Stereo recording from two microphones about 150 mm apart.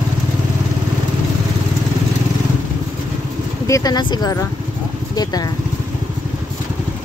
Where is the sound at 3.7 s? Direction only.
25° left (ahead or behind).